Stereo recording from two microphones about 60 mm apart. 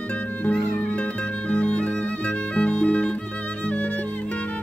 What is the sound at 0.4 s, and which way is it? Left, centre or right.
Music, left.